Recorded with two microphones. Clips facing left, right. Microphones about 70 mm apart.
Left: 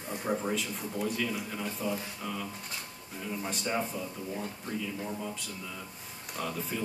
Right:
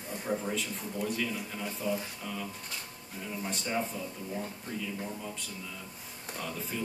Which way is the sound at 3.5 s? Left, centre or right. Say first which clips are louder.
Even; centre.